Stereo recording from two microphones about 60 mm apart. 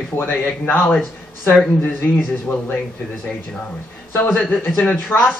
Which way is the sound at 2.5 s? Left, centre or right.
Left.